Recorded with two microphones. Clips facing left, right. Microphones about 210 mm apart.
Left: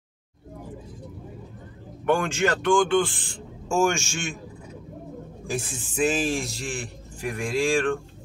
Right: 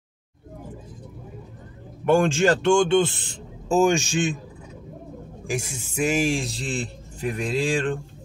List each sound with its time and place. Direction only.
2.0 s speech: 25° right (ahead or behind)
5.5 s speech: 10° right (ahead or behind)